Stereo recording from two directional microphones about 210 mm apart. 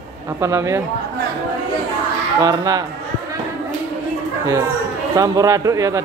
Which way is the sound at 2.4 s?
15° right (ahead or behind).